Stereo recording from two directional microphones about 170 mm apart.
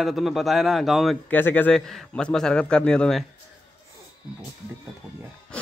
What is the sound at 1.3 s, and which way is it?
A man's voice, 10° left (ahead or behind).